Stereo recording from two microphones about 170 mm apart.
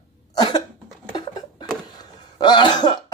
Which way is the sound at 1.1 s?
25° left (ahead or behind).